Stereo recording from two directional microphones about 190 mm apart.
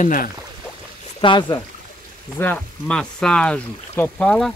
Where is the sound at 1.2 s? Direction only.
25° left (ahead or behind).